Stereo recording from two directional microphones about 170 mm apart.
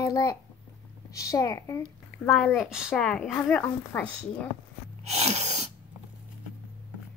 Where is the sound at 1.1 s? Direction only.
20° left (ahead or behind).